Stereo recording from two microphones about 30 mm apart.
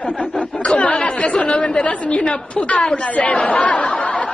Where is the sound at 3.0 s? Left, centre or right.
Left.